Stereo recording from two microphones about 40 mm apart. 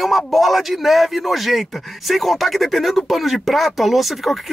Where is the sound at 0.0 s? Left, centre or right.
Centre.